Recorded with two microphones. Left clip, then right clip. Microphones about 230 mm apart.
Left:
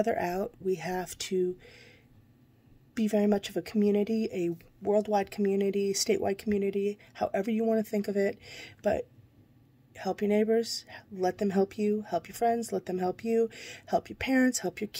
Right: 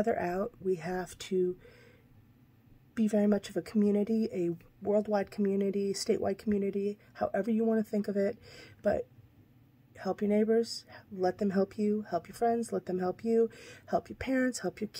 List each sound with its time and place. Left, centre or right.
0.0 s speech: centre
3.1 s speech: centre